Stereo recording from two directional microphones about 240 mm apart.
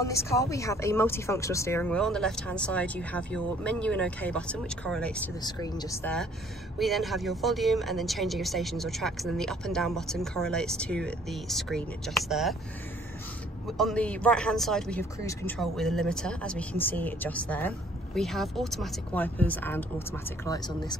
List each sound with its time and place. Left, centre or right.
0.0 s speech: centre
5.4 s speech: centre
6.8 s speech: centre
13.7 s speech: centre